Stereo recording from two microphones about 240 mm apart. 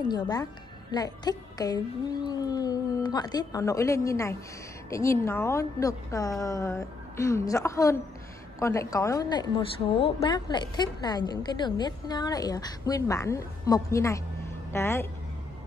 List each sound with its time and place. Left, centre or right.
0.1 s a woman's voice: centre